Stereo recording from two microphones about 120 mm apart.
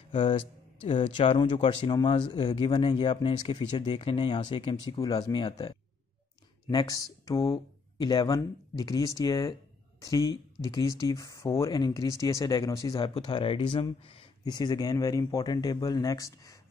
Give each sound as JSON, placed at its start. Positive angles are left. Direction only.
{"t": 0.8, "sound": "speech", "side_deg": 50}
{"t": 4.7, "sound": "speech", "side_deg": 35}
{"t": 13.0, "sound": "speech", "side_deg": 40}